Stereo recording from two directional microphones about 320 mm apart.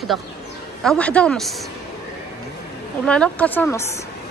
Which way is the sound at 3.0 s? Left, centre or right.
Centre.